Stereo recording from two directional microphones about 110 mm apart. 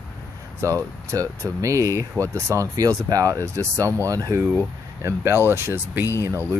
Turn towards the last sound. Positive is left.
turn(degrees=-30)  # may be behind; listen again after turning